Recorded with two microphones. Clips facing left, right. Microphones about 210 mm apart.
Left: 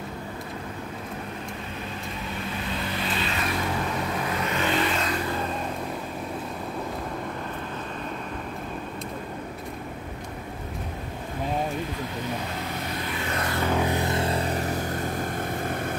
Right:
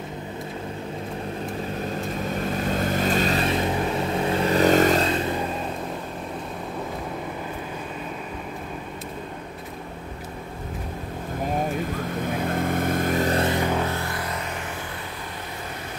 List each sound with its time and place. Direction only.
2.3 s vehicle: 45° right (ahead or behind)
3.4 s vehicle: 25° right (ahead or behind); by 5.0 s 45° right (ahead or behind)
5.0 s vehicle: 25° right (ahead or behind)
12.4 s vehicle: 50° right (ahead or behind)
13.4 s music: 20° right (ahead or behind)
13.7 s music: 15° left (ahead or behind); by 15.2 s 40° left (ahead or behind)